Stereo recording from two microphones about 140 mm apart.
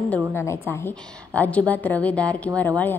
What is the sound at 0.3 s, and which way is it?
A woman's voice, 15° left (ahead or behind).